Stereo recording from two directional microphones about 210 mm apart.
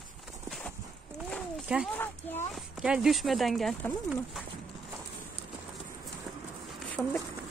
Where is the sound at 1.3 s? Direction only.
5° right (ahead or behind).